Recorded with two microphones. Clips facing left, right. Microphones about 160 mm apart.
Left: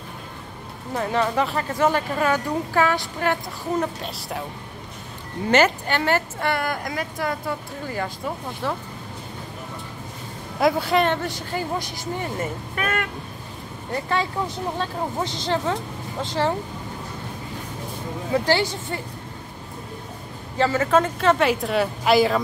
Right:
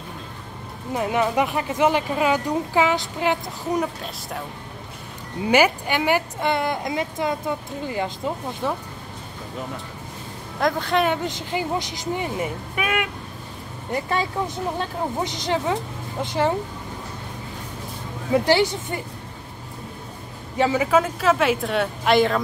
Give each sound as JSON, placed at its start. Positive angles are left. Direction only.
{"t": 0.9, "sound": "speech", "side_deg": -15}
{"t": 4.0, "sound": "speech", "side_deg": 0}
{"t": 5.5, "sound": "speech", "side_deg": -10}
{"t": 10.6, "sound": "speech", "side_deg": 5}
{"t": 11.2, "sound": "speech", "side_deg": -20}
{"t": 18.3, "sound": "speech", "side_deg": -20}
{"t": 20.5, "sound": "speech", "side_deg": -15}